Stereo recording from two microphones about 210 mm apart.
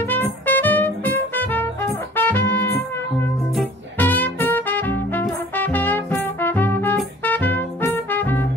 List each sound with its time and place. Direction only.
0.1 s music: 10° left (ahead or behind)